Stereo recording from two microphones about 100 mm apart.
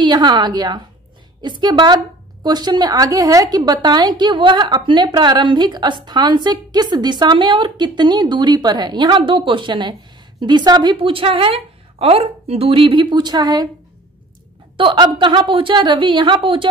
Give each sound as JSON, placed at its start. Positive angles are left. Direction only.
{"t": 0.0, "sound": "a woman's voice", "side_deg": -50}
{"t": 14.8, "sound": "a woman's voice", "side_deg": -55}